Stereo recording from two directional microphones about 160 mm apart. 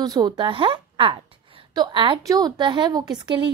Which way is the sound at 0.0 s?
25° right (ahead or behind).